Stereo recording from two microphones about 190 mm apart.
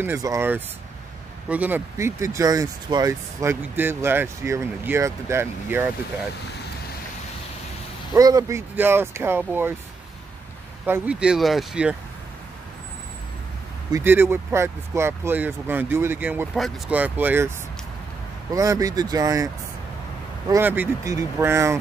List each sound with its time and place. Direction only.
0.0 s speech: 15° right (ahead or behind)
8.1 s speech: 20° right (ahead or behind)
10.9 s speech: 5° right (ahead or behind)
13.9 s speech: 10° right (ahead or behind)
18.5 s speech: 15° right (ahead or behind)